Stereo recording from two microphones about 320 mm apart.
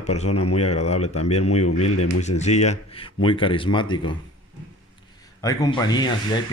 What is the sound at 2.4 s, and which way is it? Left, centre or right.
Speech, left.